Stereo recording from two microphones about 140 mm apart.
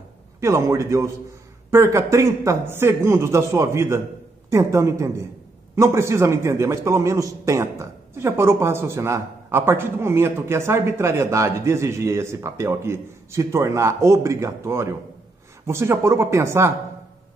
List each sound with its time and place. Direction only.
0.4 s a man's voice: 20° right (ahead or behind)